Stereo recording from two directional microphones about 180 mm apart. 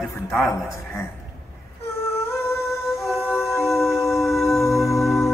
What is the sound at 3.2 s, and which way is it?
Music, 15° left (ahead or behind).